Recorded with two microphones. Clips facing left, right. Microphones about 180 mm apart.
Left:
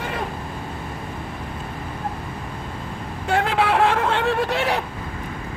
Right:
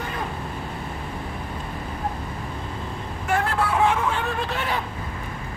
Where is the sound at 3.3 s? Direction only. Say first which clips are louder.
Left 4 dB; 90° left; by 4.8 s 75° left (ahead or behind).